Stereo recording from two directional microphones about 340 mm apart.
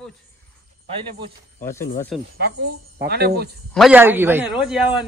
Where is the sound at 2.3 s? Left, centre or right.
Right.